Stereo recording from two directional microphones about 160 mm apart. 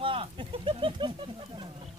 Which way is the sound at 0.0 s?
35° right (ahead or behind).